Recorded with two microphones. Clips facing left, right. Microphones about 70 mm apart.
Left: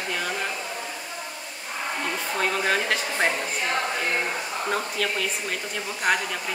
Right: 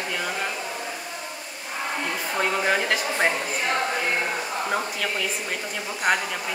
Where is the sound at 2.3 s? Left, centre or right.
Centre.